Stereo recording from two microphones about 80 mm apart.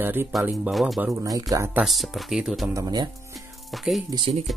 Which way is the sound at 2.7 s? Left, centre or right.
Right.